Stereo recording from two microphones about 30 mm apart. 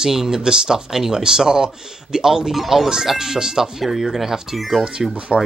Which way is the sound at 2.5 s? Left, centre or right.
Centre.